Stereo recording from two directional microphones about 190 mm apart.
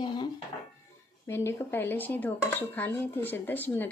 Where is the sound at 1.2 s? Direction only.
10° left (ahead or behind).